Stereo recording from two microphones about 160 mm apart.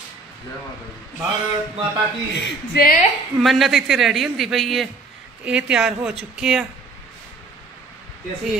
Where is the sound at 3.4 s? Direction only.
Centre (ahead or behind).